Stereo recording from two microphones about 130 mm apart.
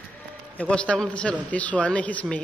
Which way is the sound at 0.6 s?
10° left (ahead or behind).